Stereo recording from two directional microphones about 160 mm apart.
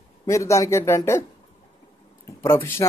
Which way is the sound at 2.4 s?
15° left (ahead or behind).